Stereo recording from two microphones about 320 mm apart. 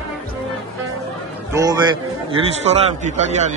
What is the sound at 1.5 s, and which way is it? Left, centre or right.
Speech, centre.